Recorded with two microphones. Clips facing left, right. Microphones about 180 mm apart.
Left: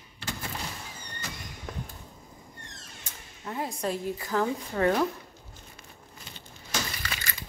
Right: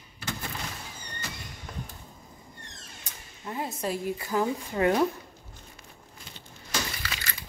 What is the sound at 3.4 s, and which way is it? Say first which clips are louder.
Speech: even; 5° right (ahead or behind).